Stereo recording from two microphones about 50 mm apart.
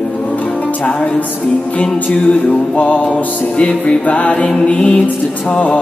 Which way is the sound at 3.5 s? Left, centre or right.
Left.